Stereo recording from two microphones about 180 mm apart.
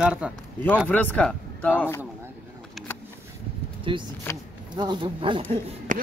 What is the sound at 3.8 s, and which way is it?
Speech, 25° right (ahead or behind).